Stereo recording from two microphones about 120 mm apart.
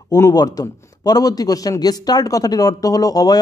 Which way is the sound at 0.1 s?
30° left (ahead or behind).